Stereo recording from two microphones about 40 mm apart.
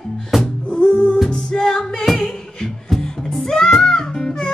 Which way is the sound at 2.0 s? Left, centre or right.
Centre.